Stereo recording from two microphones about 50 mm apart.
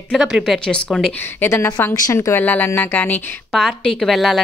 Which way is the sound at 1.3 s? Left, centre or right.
Left.